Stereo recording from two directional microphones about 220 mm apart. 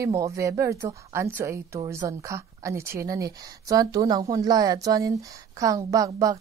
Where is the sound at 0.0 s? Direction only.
15° right (ahead or behind).